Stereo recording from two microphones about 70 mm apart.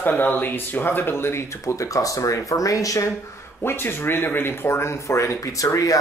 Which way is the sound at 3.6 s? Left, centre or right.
Left.